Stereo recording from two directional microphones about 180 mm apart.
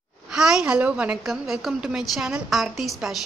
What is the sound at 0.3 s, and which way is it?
Speech, 5° right (ahead or behind).